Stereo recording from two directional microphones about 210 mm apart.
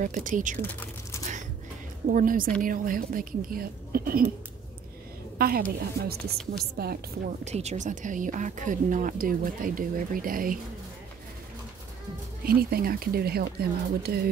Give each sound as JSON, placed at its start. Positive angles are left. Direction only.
{"t": 0.0, "sound": "speech", "side_deg": -40}
{"t": 0.6, "sound": "a sound", "side_deg": 10}
{"t": 2.0, "sound": "speech", "side_deg": -40}
{"t": 5.4, "sound": "speech", "side_deg": -45}
{"t": 7.4, "sound": "speech", "side_deg": -30}
{"t": 12.4, "sound": "speech", "side_deg": -45}